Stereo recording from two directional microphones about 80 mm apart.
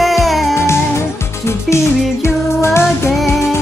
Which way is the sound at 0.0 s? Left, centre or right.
Centre.